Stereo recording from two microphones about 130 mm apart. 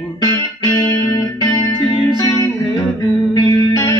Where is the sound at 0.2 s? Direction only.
30° left (ahead or behind).